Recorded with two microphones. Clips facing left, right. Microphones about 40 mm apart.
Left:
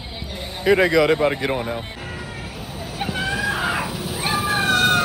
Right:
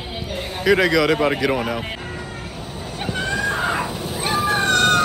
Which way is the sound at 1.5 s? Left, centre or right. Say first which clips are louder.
Right 2 dB; right.